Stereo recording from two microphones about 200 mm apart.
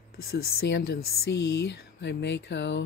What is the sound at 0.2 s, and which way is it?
Speech, 50° left (ahead or behind).